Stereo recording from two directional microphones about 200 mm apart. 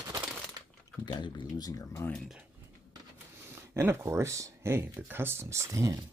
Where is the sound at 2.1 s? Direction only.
Centre (ahead or behind).